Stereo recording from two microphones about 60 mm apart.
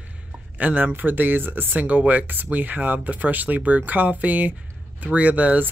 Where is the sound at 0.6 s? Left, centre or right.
Right.